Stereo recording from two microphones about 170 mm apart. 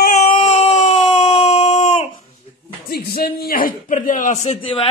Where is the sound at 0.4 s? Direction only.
35° left (ahead or behind).